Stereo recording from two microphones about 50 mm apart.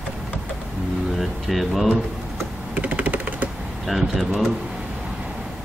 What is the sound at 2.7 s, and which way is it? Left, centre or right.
Computer keyboard, right.